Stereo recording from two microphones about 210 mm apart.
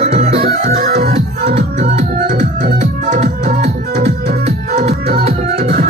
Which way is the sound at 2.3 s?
35° right (ahead or behind).